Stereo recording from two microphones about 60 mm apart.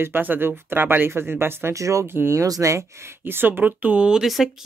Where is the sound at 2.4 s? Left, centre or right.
Right.